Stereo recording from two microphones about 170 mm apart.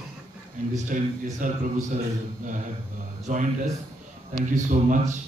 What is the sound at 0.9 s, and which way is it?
Speech, 45° right (ahead or behind).